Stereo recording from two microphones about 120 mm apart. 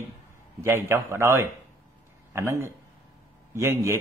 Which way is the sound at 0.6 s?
20° right (ahead or behind).